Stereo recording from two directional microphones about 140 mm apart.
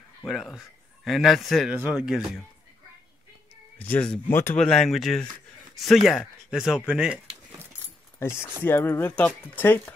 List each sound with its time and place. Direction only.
0.2 s a man's voice: centre (ahead or behind)
3.7 s speech: 10° left (ahead or behind)
4.6 s speech: 5° left (ahead or behind)
8.2 s speech: 15° left (ahead or behind)